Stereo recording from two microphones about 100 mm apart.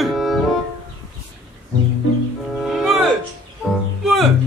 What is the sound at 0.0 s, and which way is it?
Music, centre (ahead or behind).